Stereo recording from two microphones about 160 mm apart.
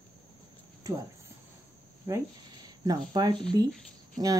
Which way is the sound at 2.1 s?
20° right (ahead or behind).